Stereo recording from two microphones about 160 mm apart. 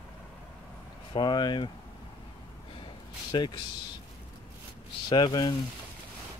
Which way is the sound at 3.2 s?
30° left (ahead or behind).